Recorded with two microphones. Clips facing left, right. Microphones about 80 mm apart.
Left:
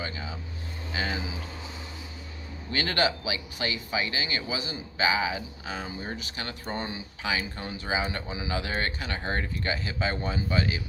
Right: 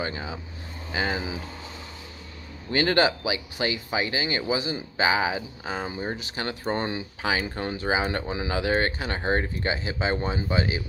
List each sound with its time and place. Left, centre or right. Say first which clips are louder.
0.0 s speech: right 5 dB; right
2.7 s speech: right 5 dB; right